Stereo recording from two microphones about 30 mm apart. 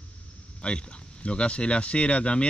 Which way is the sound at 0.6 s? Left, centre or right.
Left.